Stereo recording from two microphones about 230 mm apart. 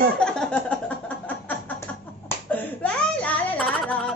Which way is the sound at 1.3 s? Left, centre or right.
Centre.